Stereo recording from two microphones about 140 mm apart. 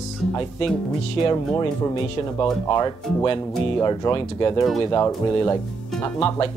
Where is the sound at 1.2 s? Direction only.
25° left (ahead or behind).